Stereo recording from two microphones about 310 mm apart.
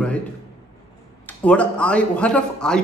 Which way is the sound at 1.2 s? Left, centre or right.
Centre.